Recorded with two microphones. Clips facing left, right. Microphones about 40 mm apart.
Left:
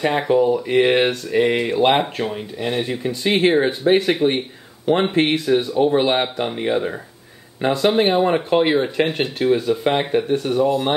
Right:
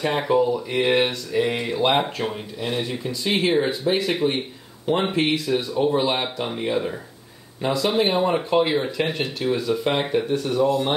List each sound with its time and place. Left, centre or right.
0.0 s speech: centre
0.5 s speech: left
7.6 s speech: left
9.8 s speech: left